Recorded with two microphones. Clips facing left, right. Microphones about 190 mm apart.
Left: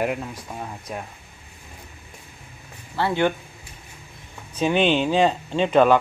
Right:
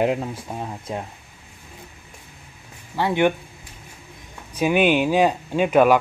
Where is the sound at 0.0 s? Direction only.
25° right (ahead or behind).